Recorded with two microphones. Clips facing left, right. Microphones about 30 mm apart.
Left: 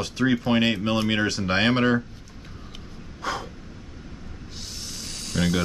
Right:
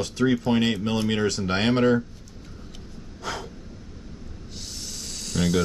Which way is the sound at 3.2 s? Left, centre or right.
Centre.